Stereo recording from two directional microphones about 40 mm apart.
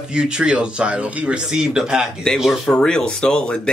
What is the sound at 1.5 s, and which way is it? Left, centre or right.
Speech, centre.